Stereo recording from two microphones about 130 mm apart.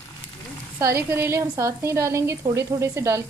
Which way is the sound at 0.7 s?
20° right (ahead or behind).